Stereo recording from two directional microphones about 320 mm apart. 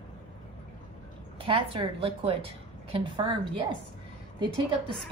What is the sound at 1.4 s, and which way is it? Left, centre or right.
A woman's voice, centre.